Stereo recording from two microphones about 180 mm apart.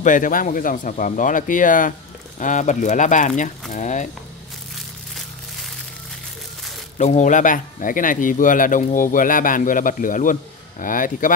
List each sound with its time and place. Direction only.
0.0 s a man's voice: 45° left (ahead or behind)
7.0 s a man's voice: 40° left (ahead or behind)